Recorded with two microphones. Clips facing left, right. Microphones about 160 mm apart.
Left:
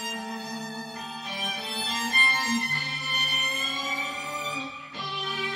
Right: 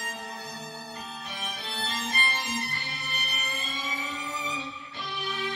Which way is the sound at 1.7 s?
Centre (ahead or behind).